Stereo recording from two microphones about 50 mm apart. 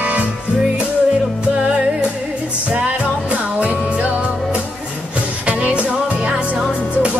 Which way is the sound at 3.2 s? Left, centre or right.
Right.